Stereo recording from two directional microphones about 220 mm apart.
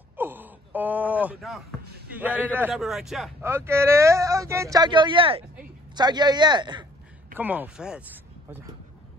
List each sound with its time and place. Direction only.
0.2 s a sound: 10° right (ahead or behind)
2.1 s a man's voice: 10° right (ahead or behind)
3.4 s speech: 10° right (ahead or behind)
7.3 s speech: 10° right (ahead or behind)